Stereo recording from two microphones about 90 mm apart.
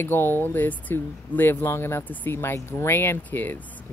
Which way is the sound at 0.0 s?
25° left (ahead or behind).